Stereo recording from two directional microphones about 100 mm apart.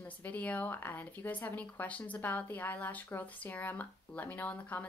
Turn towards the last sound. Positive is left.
turn(degrees=15)  # may be behind; listen again after turning